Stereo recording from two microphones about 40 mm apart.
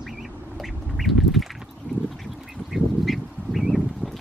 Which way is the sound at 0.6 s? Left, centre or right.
Centre.